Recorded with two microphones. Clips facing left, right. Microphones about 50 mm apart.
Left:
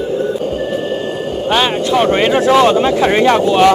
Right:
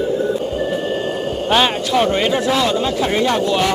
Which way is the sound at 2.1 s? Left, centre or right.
Left.